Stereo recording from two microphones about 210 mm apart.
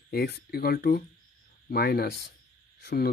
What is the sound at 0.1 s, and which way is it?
Speech, 50° left (ahead or behind).